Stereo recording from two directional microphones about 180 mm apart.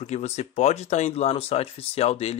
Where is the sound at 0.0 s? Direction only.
40° left (ahead or behind).